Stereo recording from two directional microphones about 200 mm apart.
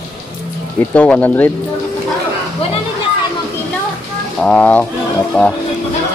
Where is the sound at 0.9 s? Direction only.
5° left (ahead or behind).